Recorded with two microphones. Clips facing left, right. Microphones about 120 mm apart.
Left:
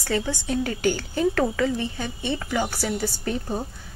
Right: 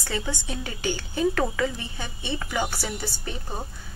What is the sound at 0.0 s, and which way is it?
A woman's voice, 40° left (ahead or behind).